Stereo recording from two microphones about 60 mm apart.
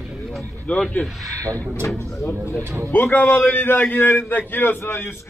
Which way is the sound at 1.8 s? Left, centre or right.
Left.